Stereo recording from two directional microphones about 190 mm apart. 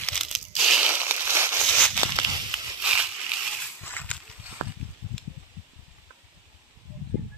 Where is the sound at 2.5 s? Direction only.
5° right (ahead or behind).